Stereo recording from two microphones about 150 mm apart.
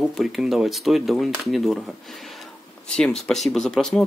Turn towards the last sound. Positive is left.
turn(degrees=0)  # may be behind; listen again after turning